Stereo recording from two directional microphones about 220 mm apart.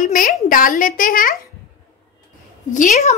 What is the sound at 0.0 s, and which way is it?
A woman's voice, 40° left (ahead or behind).